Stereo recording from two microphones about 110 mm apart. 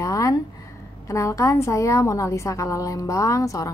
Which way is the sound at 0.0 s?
30° left (ahead or behind).